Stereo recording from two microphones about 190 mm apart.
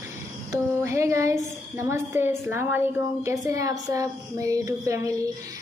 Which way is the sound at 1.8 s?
15° right (ahead or behind).